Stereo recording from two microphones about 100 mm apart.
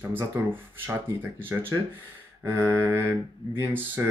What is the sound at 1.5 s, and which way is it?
Speech, 25° right (ahead or behind).